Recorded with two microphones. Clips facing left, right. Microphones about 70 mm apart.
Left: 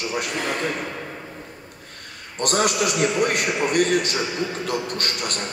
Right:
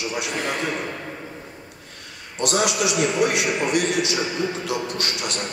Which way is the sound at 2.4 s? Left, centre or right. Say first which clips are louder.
Left 1 dB; left.